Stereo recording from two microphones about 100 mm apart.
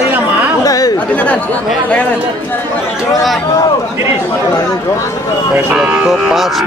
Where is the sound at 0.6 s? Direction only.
35° left (ahead or behind).